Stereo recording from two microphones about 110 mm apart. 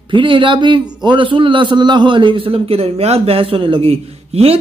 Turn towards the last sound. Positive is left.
turn(degrees=-65)  # may be behind; listen again after turning